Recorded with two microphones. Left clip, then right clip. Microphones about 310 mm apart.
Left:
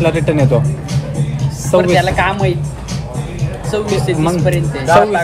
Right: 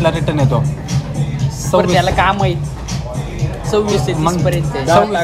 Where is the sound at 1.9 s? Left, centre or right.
Right.